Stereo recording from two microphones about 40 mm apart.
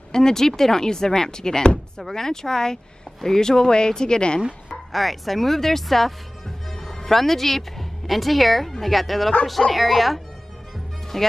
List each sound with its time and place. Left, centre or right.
0.1 s speech: centre
4.9 s speech: centre